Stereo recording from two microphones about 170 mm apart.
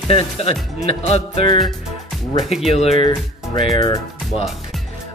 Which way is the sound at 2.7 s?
35° left (ahead or behind).